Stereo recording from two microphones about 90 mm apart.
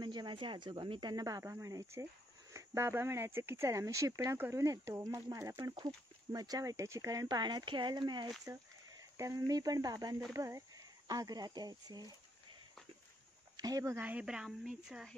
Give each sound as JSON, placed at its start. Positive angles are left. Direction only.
{"t": 0.0, "sound": "speech", "side_deg": -55}
{"t": 1.1, "sound": "speech", "side_deg": -40}
{"t": 8.5, "sound": "speech", "side_deg": -40}
{"t": 13.6, "sound": "speech", "side_deg": -45}
{"t": 13.9, "sound": "speech", "side_deg": -15}